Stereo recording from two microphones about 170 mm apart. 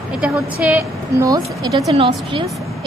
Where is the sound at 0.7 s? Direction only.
20° right (ahead or behind).